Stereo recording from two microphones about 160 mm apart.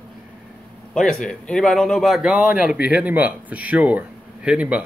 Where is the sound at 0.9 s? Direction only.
5° left (ahead or behind).